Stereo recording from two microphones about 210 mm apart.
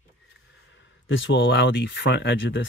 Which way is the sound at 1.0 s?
65° left (ahead or behind).